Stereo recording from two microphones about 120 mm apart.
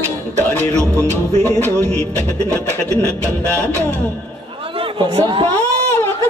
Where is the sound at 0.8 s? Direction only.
25° right (ahead or behind).